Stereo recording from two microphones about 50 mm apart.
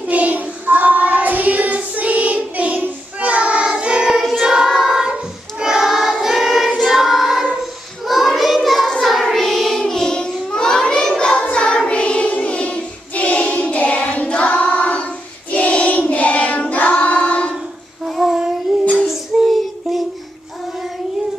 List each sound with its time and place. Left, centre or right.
0.0 s child singing: right; by 5.0 s centre
5.6 s choir: centre
8.1 s child singing: centre
11.5 s choir: centre
18.0 s child singing: centre